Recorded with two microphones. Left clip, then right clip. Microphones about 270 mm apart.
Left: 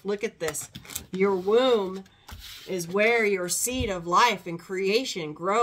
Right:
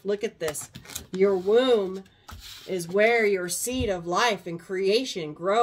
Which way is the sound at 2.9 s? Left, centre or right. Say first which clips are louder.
Right 1 dB; centre.